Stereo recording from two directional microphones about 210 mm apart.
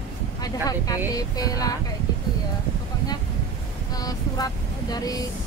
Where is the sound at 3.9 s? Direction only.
20° left (ahead or behind).